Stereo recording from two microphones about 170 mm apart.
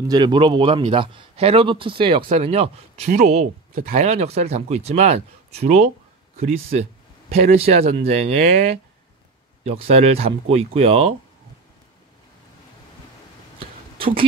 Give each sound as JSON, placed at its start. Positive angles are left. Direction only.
{"t": 0.1, "sound": "speech", "side_deg": -25}
{"t": 3.7, "sound": "speech", "side_deg": -55}
{"t": 4.0, "sound": "speech", "side_deg": -40}
{"t": 13.6, "sound": "a sound", "side_deg": -30}